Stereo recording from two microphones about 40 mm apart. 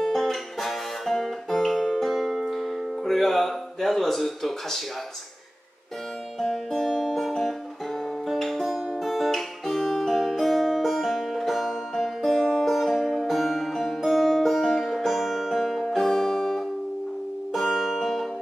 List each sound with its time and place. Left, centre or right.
0.0 s music: centre
3.1 s speech: centre
6.4 s music: centre
17.6 s music: centre